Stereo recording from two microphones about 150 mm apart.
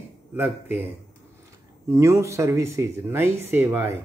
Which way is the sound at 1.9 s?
20° right (ahead or behind).